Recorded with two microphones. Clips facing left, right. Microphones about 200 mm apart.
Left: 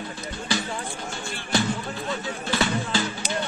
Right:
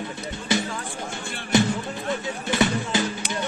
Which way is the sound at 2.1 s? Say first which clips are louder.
Right 2 dB; 20° right (ahead or behind).